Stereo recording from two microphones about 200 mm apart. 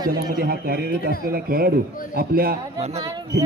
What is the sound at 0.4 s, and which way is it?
Speech, 50° right (ahead or behind).